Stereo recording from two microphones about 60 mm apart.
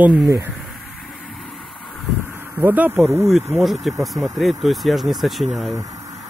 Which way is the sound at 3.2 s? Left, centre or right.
Centre.